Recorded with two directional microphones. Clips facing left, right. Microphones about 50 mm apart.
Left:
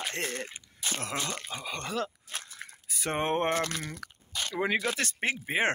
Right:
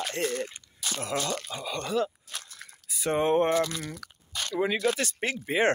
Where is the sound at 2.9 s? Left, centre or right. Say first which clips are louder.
Right 5 dB; left.